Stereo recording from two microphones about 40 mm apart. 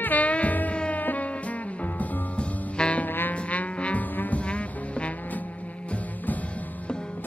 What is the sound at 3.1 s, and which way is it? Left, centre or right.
Music, left.